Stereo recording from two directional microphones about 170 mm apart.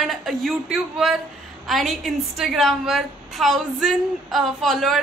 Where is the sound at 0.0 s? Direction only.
Centre (ahead or behind).